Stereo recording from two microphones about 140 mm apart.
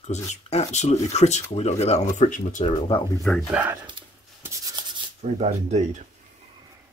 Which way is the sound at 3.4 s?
10° right (ahead or behind).